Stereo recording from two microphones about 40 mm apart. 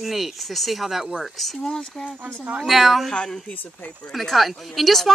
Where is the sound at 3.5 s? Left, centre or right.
Left.